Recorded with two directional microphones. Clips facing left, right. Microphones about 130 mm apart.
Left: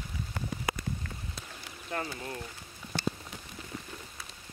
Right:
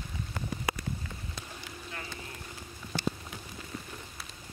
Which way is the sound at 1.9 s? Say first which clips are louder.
Left 10 dB; 40° left (ahead or behind).